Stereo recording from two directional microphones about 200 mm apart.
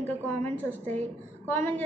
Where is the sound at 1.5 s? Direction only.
10° left (ahead or behind).